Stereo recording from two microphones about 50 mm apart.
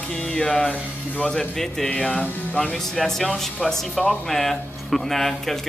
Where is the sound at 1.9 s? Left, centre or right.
Left.